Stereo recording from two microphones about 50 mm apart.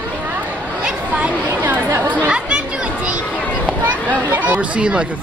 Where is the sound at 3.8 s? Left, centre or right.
Right.